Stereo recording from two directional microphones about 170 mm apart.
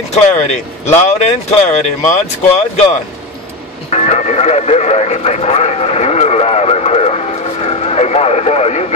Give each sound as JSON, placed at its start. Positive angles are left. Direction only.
{"t": 0.1, "sound": "speech", "side_deg": 45}